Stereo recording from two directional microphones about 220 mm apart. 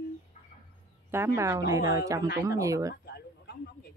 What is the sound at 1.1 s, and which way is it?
A woman's voice, 10° right (ahead or behind).